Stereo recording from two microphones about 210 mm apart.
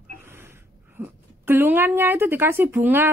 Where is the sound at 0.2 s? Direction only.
10° right (ahead or behind).